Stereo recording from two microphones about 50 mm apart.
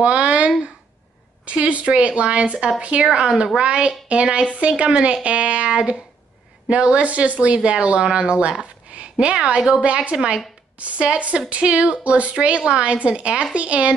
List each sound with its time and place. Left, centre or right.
0.0 s a woman's voice: right
9.8 s speech: right